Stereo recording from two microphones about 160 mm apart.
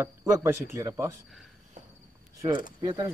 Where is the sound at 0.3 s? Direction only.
15° right (ahead or behind).